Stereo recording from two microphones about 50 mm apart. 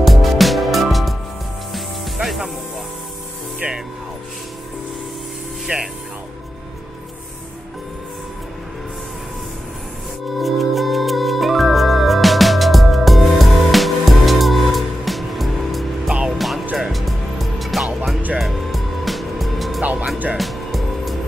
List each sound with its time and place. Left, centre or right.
0.0 s music: centre
2.1 s music: centre
5.7 s music: right
10.4 s music: centre
19.8 s music: right
20.3 s music: centre